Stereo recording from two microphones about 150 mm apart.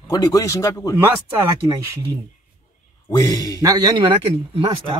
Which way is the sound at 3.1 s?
25° left (ahead or behind).